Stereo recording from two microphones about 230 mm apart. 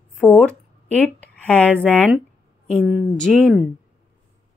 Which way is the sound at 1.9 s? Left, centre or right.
Centre.